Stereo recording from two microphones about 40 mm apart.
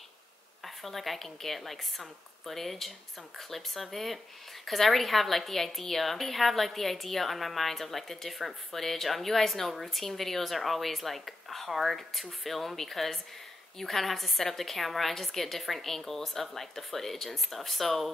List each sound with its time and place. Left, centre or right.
0.7 s a woman's voice: centre